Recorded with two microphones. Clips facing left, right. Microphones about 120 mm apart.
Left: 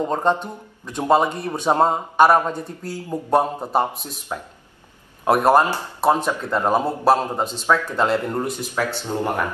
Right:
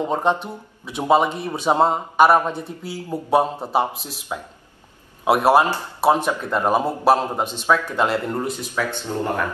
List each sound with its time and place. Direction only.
0.0 s speech: 15° right (ahead or behind)
8.3 s speech: 5° left (ahead or behind)
8.7 s speech: 15° left (ahead or behind)